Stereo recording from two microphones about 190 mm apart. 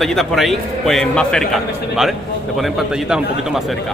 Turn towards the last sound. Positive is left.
turn(degrees=0)  # may be behind; listen again after turning